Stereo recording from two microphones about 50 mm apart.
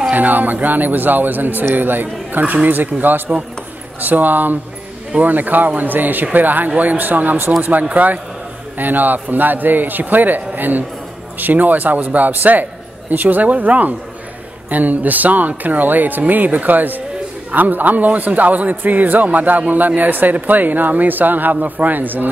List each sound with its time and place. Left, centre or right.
0.1 s a man's voice: right